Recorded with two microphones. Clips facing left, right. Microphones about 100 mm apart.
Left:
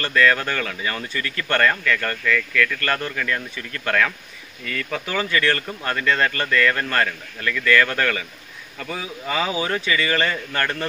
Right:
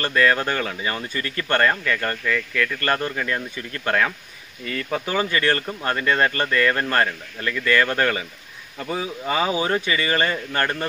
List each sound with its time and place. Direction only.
0.0 s speech: 25° right (ahead or behind)